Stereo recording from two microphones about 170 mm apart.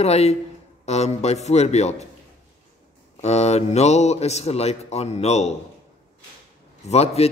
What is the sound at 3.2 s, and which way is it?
A man's voice, 40° left (ahead or behind).